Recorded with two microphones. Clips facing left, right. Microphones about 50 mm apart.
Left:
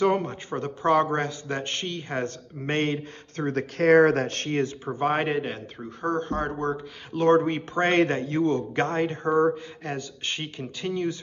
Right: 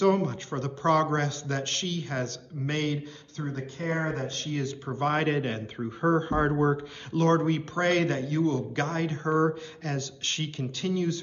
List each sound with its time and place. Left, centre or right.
0.0 s a man's voice: centre
3.3 s speech: left
3.7 s speech: left
4.8 s speech: centre
7.1 s a man's voice: centre